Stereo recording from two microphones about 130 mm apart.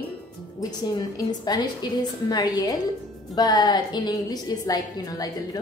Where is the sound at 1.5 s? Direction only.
30° left (ahead or behind).